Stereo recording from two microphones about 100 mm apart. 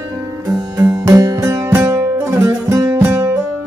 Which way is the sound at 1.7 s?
30° right (ahead or behind).